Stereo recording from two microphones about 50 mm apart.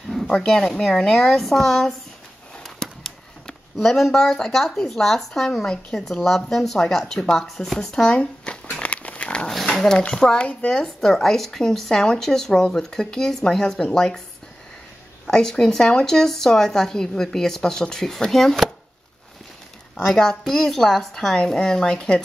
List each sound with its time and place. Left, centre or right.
0.4 s speech: centre
2.6 s a sound: centre
3.7 s speech: centre
8.7 s pig: left
9.5 s dog: centre
10.1 s speech: centre
15.2 s speech: centre
20.0 s speech: centre